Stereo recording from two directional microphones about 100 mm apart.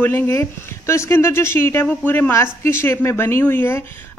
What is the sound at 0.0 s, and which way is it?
Speech, 25° left (ahead or behind).